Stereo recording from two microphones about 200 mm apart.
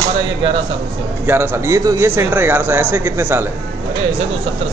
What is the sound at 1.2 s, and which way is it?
Speech, 10° right (ahead or behind).